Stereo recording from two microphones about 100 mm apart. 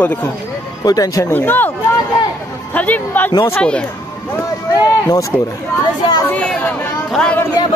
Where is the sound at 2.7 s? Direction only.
15° left (ahead or behind).